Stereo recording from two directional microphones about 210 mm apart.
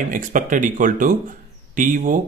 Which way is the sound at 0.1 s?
40° right (ahead or behind).